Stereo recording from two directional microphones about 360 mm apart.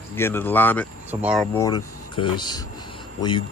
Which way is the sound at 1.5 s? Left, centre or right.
Centre.